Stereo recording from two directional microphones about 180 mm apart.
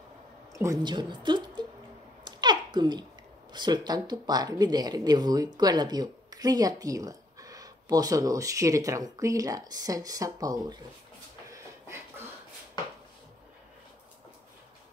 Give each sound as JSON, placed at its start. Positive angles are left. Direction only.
{"t": 0.5, "sound": "speech", "side_deg": -15}
{"t": 2.2, "sound": "a sound", "side_deg": -25}
{"t": 3.5, "sound": "speech", "side_deg": -25}